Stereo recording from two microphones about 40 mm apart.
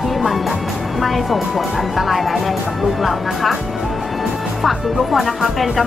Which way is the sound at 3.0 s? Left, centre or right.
Centre.